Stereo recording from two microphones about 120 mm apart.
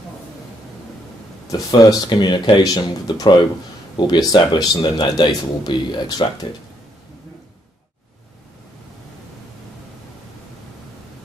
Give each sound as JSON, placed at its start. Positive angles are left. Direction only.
{"t": 1.5, "sound": "speech", "side_deg": 30}